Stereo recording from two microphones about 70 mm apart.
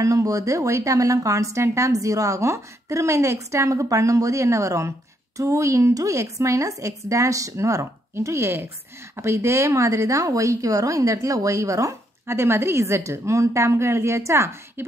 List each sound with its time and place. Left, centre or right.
0.0 s speech: right